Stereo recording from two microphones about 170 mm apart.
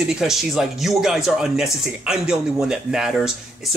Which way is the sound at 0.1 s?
Centre (ahead or behind).